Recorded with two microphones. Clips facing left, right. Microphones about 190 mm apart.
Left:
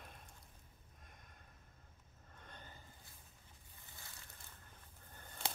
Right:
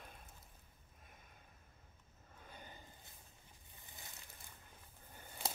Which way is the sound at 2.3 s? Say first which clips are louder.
Right 1 dB; 5° right (ahead or behind).